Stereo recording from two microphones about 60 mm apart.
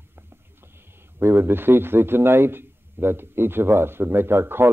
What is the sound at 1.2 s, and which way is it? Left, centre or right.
Speech, right.